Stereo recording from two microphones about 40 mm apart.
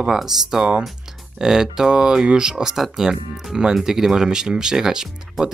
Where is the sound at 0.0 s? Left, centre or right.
Centre.